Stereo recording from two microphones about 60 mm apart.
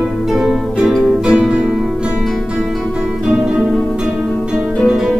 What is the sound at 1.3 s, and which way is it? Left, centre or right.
Music, centre.